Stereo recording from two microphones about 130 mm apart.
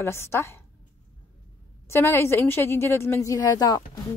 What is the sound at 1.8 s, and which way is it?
A woman's voice, 20° left (ahead or behind).